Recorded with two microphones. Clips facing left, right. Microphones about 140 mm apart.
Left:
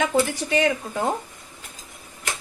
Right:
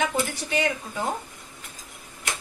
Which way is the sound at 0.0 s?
35° left (ahead or behind).